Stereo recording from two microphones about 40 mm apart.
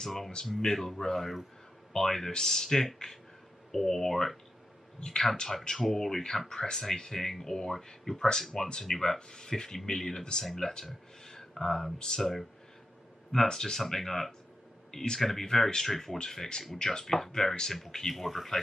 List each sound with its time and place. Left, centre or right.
0.0 s speech: centre